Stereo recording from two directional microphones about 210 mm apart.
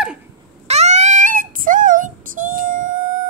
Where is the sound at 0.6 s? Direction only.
30° right (ahead or behind).